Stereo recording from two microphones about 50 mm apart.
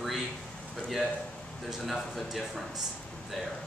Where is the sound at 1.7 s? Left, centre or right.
Centre.